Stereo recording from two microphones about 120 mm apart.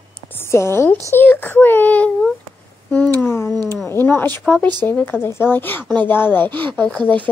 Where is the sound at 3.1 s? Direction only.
20° left (ahead or behind).